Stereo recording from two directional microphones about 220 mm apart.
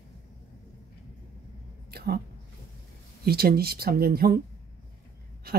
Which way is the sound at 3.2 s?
45° right (ahead or behind).